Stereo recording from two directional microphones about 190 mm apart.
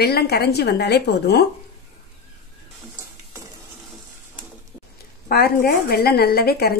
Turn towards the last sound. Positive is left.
turn(degrees=55)  # may be behind; listen again after turning